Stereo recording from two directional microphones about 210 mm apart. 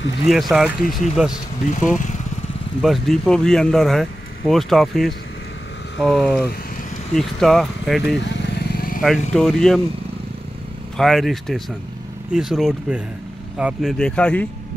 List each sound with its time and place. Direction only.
0.3 s speech: centre (ahead or behind)
1.7 s speech: 35° left (ahead or behind)
2.8 s speech: centre (ahead or behind)
8.7 s vehicle: 45° left (ahead or behind)
9.0 s speech: centre (ahead or behind)
11.0 s speech: centre (ahead or behind)